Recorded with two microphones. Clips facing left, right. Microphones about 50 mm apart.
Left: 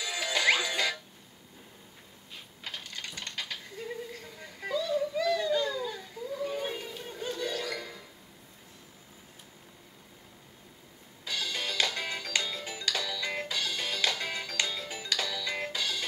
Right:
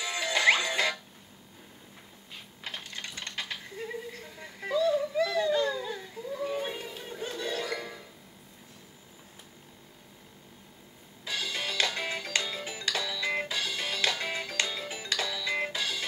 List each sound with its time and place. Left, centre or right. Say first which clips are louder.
0.0 s music: right 3 dB; centre
2.6 s typing: right 1 dB; centre
4.2 s whimper: right 1 dB; centre
5.8 s a sound: even; centre
11.2 s music: right 1 dB; centre